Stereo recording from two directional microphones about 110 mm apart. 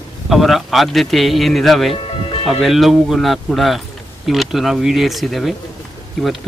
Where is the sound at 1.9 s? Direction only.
55° left (ahead or behind).